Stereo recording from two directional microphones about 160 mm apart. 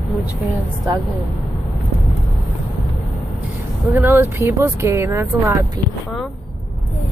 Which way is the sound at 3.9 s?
15° right (ahead or behind).